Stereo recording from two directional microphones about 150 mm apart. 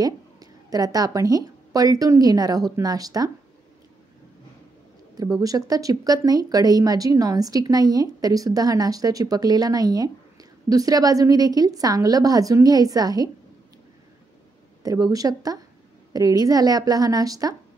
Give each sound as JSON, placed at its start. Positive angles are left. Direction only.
{"t": 0.0, "sound": "a woman's voice", "side_deg": -25}
{"t": 5.1, "sound": "speech", "side_deg": -25}
{"t": 14.8, "sound": "speech", "side_deg": -25}